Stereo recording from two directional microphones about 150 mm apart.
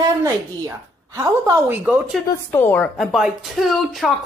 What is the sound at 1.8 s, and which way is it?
Speech, 5° right (ahead or behind).